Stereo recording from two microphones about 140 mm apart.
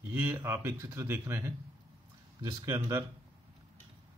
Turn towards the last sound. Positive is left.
turn(degrees=-20)  # may be behind; listen again after turning